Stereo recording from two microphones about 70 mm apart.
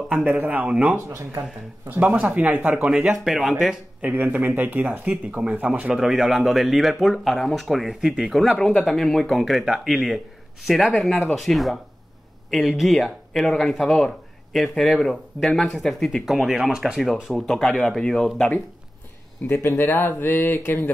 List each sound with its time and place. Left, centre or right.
0.1 s speech: right
0.9 s speech: right
2.1 s speech: right; by 3.7 s centre
4.1 s speech: right
5.9 s speech: centre
19.4 s speech: left